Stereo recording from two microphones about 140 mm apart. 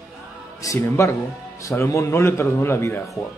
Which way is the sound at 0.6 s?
20° left (ahead or behind).